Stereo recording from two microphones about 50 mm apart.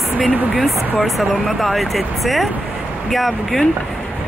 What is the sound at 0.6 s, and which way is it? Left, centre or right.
Speech, centre.